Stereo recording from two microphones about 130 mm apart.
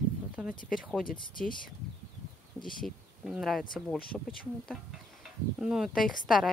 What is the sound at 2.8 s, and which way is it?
Speech, 5° right (ahead or behind).